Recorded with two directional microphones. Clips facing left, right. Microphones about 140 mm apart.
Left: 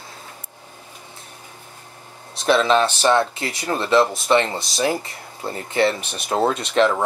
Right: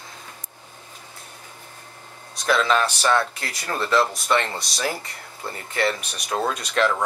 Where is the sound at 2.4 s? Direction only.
25° left (ahead or behind).